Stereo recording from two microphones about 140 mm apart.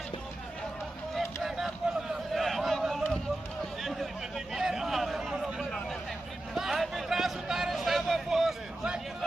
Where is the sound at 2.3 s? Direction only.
Centre (ahead or behind).